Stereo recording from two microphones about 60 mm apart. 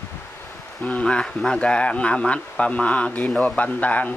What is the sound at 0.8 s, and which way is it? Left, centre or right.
A man's voice, centre.